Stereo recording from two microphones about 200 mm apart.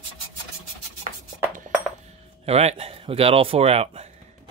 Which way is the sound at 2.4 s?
30° right (ahead or behind).